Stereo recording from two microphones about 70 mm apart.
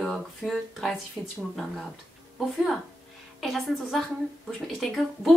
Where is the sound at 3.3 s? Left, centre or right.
Centre.